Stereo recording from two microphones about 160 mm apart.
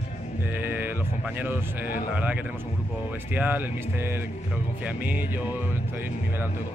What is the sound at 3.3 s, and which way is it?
Speech, 10° right (ahead or behind).